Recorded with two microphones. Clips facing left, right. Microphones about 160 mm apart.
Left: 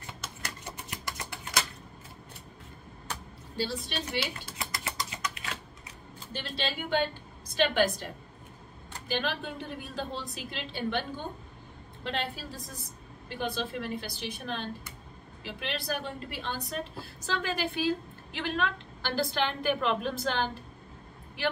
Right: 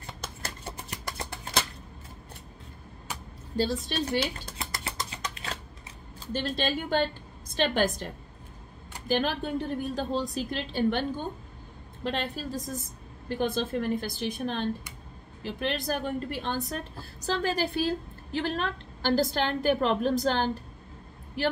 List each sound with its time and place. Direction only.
0.2 s a sound: 35° right (ahead or behind)
3.5 s a woman's voice: 40° right (ahead or behind)
4.8 s typewriter: 35° right (ahead or behind)
6.1 s a woman's voice: 45° right (ahead or behind)